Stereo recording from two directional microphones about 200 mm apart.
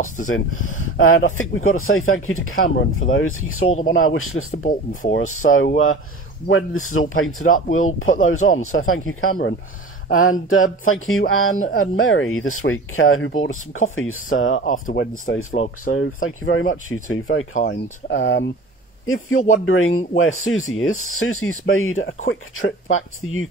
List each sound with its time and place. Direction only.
0.3 s speech: 90° left
4.5 s speech: 40° left (ahead or behind)
5.1 s speech: 90° left
6.5 s speech: 90° left
14.5 s speech: 40° left (ahead or behind)
15.9 s speech: 90° left
16.9 s speech: 90° left
17.6 s speech: 65° left (ahead or behind)
19.0 s speech: 90° left
22.2 s speech: 80° left